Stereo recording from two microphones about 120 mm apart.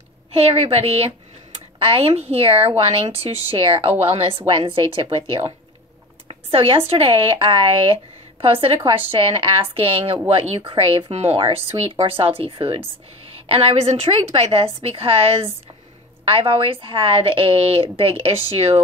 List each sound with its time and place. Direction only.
0.3 s a woman's voice: 60° right (ahead or behind)
6.2 s a sound: 50° right (ahead or behind)
6.9 s a woman's voice: 50° right (ahead or behind)
10.6 s a woman's voice: 50° right (ahead or behind)